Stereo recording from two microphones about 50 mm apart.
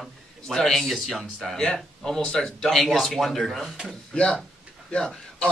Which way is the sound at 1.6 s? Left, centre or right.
Centre.